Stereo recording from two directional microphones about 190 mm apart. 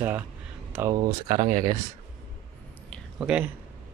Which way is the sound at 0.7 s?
10° right (ahead or behind).